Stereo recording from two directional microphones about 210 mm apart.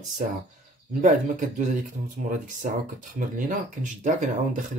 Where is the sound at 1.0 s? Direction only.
35° right (ahead or behind).